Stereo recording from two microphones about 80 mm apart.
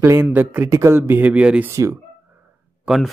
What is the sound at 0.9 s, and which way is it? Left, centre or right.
Speech, right.